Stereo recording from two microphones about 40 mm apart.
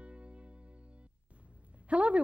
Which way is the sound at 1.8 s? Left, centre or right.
Right.